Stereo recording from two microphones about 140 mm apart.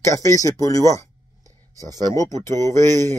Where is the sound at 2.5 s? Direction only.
20° left (ahead or behind).